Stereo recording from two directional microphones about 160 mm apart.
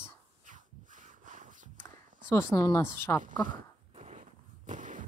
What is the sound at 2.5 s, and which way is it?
Speech, 20° left (ahead or behind).